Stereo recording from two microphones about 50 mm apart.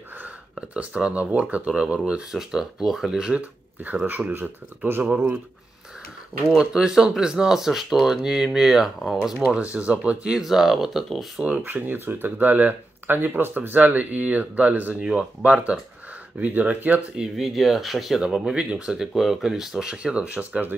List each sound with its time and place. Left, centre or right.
0.7 s speech: right
2.3 s speech: centre
3.3 s speech: right
6.5 s speech: centre
9.6 s speech: right
10.3 s speech: centre
11.3 s speech: right
11.6 s speech: right
15.0 s speech: right
17.4 s speech: centre
18.2 s speech: centre
19.1 s speech: centre; by 20.6 s right